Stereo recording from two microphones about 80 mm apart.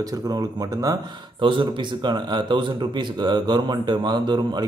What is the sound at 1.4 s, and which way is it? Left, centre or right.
Speech, right.